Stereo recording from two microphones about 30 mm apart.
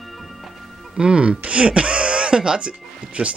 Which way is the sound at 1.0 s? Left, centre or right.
Right.